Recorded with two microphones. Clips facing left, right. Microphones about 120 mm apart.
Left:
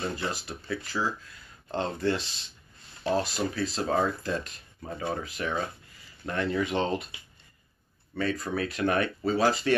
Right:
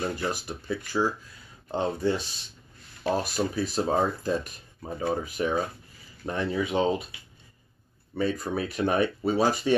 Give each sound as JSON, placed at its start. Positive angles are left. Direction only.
{"t": 0.3, "sound": "speech", "side_deg": -15}
{"t": 8.1, "sound": "speech", "side_deg": -15}